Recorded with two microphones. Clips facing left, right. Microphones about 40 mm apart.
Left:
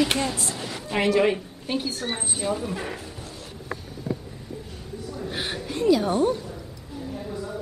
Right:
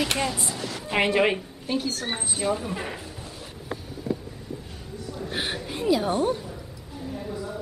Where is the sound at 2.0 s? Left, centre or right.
Centre.